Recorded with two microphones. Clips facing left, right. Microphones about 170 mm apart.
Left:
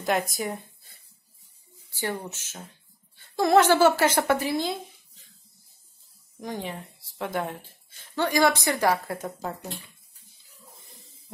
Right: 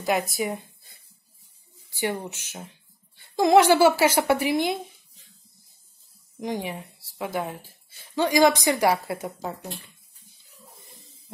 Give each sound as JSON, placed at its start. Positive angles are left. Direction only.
{"t": 0.0, "sound": "a woman's voice", "side_deg": -10}
{"t": 6.4, "sound": "a woman's voice", "side_deg": -15}
{"t": 8.2, "sound": "a woman's voice", "side_deg": -15}